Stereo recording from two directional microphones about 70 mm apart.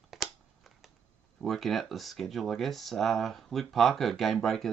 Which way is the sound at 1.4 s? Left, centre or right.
Centre.